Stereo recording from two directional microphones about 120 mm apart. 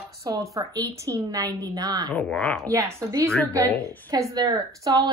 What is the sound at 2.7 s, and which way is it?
A woman's voice, 20° right (ahead or behind).